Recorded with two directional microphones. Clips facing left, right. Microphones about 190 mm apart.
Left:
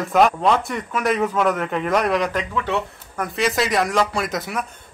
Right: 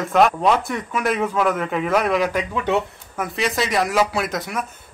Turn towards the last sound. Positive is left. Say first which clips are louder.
# even
turn(degrees=0)  # may be behind; listen again after turning